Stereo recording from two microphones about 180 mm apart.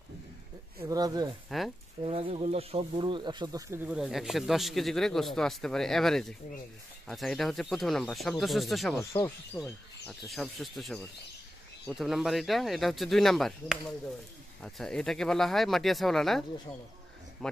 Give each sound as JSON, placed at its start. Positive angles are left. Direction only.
{"t": 0.7, "sound": "speech", "side_deg": -20}
{"t": 2.0, "sound": "speech", "side_deg": -30}
{"t": 11.9, "sound": "speech", "side_deg": 0}